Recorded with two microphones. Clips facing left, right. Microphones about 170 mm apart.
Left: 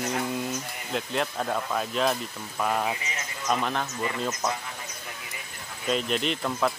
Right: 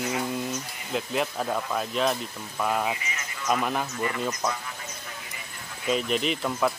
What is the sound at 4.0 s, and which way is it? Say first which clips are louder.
Speech: right 1 dB; 20° left (ahead or behind).